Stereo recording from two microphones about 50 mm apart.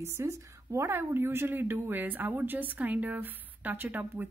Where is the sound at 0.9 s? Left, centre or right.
Right.